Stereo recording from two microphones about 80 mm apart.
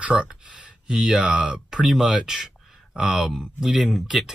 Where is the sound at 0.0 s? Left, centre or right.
Centre.